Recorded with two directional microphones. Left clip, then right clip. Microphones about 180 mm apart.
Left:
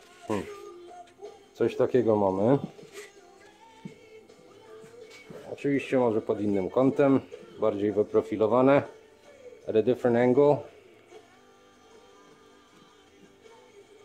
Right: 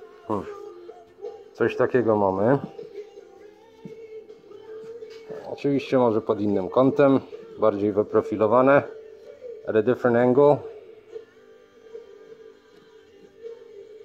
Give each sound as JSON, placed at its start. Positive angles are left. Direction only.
{"t": 1.6, "sound": "speech", "side_deg": 0}
{"t": 5.6, "sound": "speech", "side_deg": -15}